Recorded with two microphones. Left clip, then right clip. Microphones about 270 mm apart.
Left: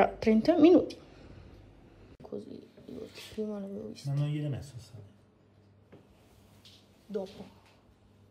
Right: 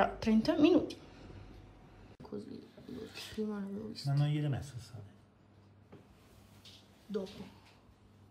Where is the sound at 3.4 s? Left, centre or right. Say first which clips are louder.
Left 4 dB; centre.